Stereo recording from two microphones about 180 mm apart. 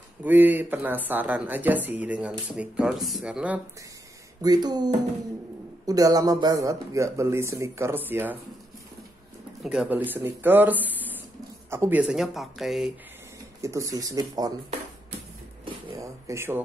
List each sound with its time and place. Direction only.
0.2 s speech: 10° right (ahead or behind)
4.4 s speech: 20° right (ahead or behind)
9.6 s speech: 5° right (ahead or behind)
13.6 s speech: 15° right (ahead or behind)
15.6 s a sound: 30° right (ahead or behind)
16.3 s speech: 15° right (ahead or behind)